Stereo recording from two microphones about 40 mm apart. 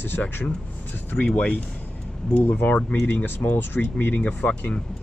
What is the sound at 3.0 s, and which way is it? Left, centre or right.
Speech, left.